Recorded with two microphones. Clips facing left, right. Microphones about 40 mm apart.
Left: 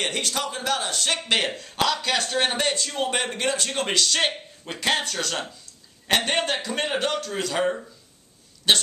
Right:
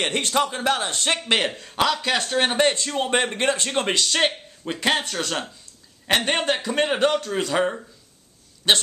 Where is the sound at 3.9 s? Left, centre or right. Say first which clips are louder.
Left 1 dB; centre.